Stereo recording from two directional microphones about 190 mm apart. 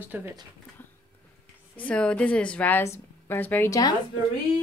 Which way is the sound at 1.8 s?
5° left (ahead or behind).